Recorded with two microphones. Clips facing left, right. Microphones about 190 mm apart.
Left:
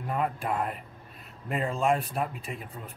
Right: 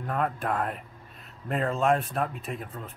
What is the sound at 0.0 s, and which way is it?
A man's voice, 5° left (ahead or behind).